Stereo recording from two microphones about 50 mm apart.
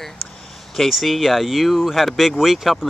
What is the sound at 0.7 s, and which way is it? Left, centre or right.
Speech, centre.